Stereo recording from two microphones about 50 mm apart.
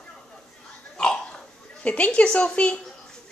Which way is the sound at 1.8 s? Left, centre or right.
Left.